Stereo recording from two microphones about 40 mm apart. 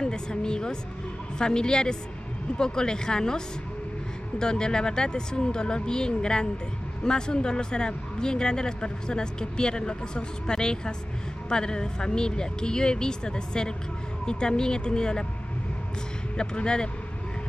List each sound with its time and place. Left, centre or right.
0.0 s speech: centre
16.3 s speech: left